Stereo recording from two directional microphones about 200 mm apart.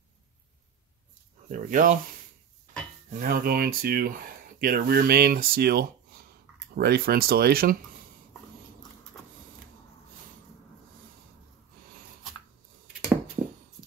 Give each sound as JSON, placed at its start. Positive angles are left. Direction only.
{"t": 1.5, "sound": "speech", "side_deg": -40}
{"t": 3.1, "sound": "speech", "side_deg": -45}
{"t": 9.1, "sound": "printer", "side_deg": 5}